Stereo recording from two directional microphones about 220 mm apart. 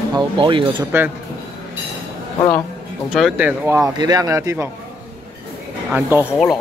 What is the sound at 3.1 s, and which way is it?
Speech, 5° right (ahead or behind).